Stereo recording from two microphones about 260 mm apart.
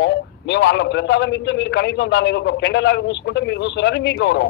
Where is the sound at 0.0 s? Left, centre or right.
Left.